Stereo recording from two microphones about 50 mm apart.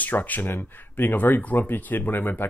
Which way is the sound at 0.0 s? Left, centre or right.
Left.